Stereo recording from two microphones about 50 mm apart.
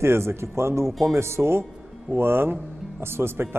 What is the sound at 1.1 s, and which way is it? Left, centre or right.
A man's voice, right.